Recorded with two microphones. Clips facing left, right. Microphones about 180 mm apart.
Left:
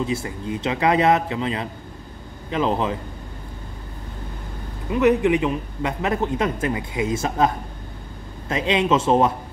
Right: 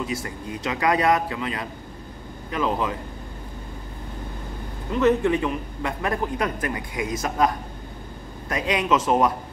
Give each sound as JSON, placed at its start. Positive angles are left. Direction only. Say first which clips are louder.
{"t": 0.0, "sound": "a man's voice", "louder": "left 4 dB", "side_deg": 25}
{"t": 4.9, "sound": "a man's voice", "louder": "left 2 dB", "side_deg": 15}